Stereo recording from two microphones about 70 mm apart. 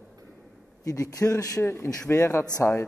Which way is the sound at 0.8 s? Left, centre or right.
Left.